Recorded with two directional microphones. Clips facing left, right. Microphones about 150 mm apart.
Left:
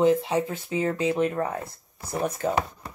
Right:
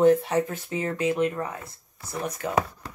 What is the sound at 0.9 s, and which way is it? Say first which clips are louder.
Speech: right 3 dB; 30° left (ahead or behind).